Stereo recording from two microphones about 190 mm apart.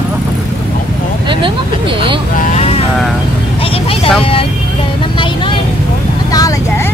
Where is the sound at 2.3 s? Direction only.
35° left (ahead or behind).